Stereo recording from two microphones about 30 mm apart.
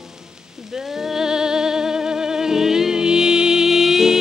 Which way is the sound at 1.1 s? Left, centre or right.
Centre.